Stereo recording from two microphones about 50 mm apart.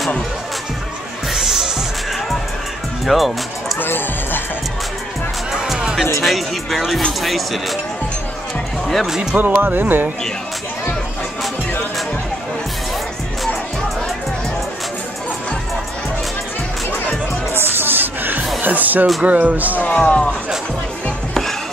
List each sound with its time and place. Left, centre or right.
1.3 s music: centre
3.1 s music: centre
3.8 s music: left
5.5 s music: centre
6.2 s speech: centre
9.0 s speech: centre
9.3 s speech: right
17.6 s music: right
19.2 s speech: right
19.9 s speech: left